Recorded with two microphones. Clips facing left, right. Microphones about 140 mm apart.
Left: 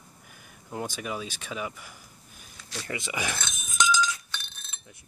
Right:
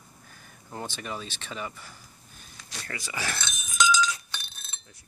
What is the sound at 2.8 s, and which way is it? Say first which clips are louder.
Speech: left 2 dB; 20° left (ahead or behind).